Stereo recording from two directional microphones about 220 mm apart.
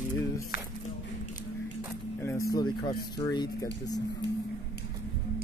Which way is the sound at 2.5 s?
20° left (ahead or behind).